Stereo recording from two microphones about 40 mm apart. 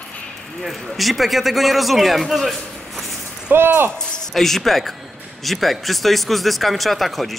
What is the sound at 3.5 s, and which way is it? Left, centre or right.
Speech, right.